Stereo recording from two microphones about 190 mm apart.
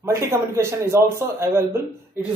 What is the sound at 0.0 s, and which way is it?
A man's voice, 15° right (ahead or behind).